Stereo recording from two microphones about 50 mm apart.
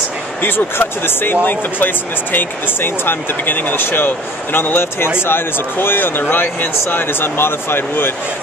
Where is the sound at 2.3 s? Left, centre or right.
Left.